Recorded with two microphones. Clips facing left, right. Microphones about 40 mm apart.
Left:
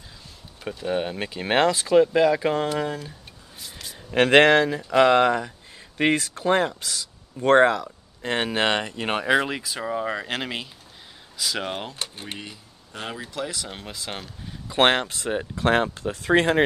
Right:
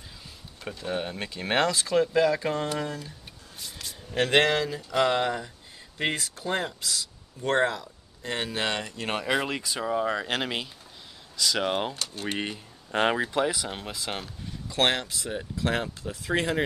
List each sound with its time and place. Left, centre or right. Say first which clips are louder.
0.7 s speech: left 5 dB; centre
3.5 s a sound: even; centre
4.1 s speech: left 7 dB; left
7.4 s speech: left 8 dB; left
9.3 s speech: left 6 dB; centre
12.4 s speech: right 6 dB; right
13.2 s speech: right 6 dB; right
13.5 s speech: right 3 dB; centre
14.7 s speech: left 6 dB; left